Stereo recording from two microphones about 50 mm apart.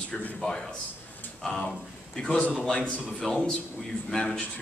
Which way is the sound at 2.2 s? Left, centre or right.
Left.